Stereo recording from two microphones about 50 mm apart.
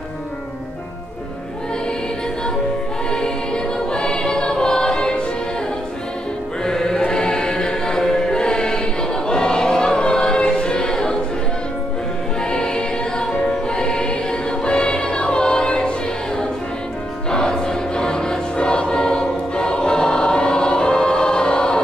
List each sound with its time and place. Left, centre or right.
3.1 s music: centre
6.6 s music: centre
9.3 s choir: centre
12.4 s music: centre
17.3 s choir: centre